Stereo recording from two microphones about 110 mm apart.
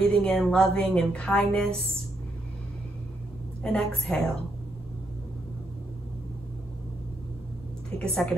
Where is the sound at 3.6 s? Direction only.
5° left (ahead or behind).